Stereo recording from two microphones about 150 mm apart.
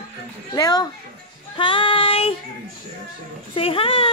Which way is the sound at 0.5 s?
25° left (ahead or behind).